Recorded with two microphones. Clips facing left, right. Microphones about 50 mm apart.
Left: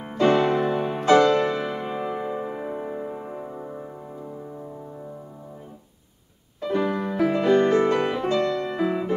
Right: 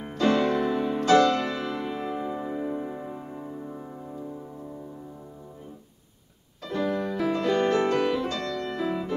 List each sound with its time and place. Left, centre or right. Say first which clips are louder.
0.2 s music: left 3 dB; left
6.6 s music: left 3 dB; left